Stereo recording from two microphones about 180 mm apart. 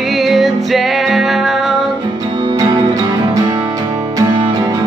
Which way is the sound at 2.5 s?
25° right (ahead or behind).